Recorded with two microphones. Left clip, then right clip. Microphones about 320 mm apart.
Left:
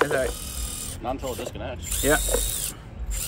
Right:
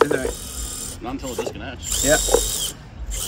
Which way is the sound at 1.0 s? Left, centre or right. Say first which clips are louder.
Right 1 dB; left.